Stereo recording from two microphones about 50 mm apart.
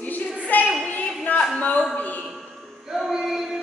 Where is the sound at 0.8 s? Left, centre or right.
Left.